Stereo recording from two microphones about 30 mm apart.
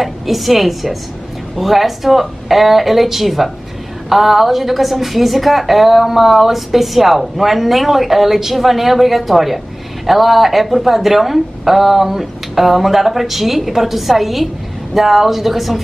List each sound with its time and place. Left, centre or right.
0.0 s a woman's voice: centre